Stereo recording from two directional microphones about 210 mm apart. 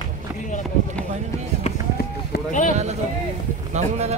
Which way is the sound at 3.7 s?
30° right (ahead or behind).